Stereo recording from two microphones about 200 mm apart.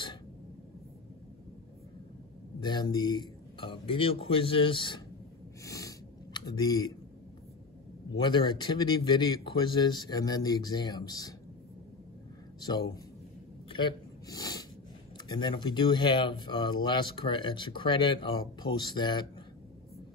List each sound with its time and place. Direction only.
2.6 s speech: 20° left (ahead or behind)
5.6 s a sound: 15° left (ahead or behind)
8.1 s speech: 25° left (ahead or behind)
12.5 s speech: 20° left (ahead or behind)
13.7 s a sound: 25° left (ahead or behind)
15.2 s speech: 20° left (ahead or behind)